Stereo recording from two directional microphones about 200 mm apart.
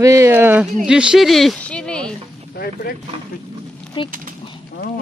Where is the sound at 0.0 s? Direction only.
15° right (ahead or behind); by 2.1 s 5° left (ahead or behind).